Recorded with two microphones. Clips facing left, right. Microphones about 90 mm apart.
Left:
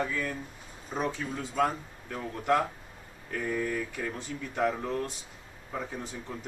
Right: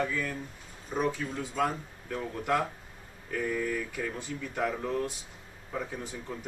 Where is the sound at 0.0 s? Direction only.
Centre (ahead or behind).